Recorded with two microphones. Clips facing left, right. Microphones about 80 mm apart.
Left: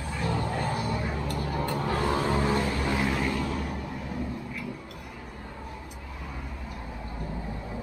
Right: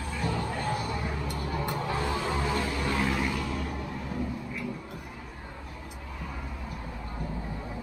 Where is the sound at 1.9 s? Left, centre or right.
Left.